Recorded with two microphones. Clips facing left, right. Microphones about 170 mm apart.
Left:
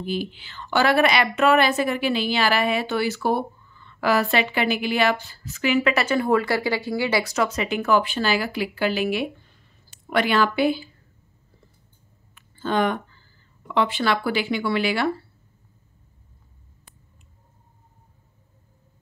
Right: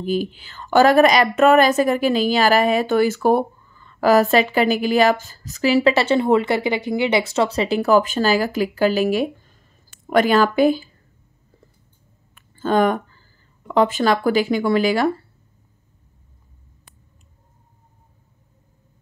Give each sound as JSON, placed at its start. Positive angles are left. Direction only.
{"t": 0.0, "sound": "a woman's voice", "side_deg": -45}
{"t": 12.4, "sound": "a sound", "side_deg": -45}
{"t": 13.7, "sound": "speech", "side_deg": -45}